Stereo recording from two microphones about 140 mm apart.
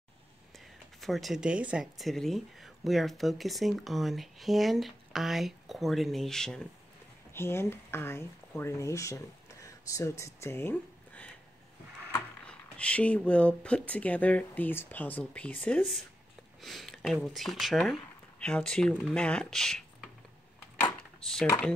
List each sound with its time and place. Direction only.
1.0 s speech: centre (ahead or behind)
7.3 s speech: 15° left (ahead or behind)
21.2 s speech: 5° left (ahead or behind)